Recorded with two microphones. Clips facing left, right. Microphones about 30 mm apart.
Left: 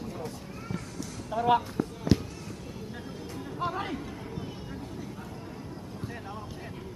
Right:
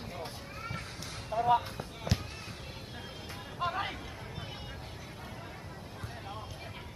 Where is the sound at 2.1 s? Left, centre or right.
Centre.